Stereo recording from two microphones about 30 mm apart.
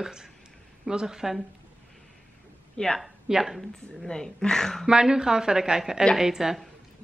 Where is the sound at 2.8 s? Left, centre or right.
Left.